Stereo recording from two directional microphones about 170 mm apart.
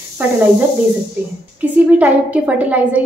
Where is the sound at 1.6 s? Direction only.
10° right (ahead or behind).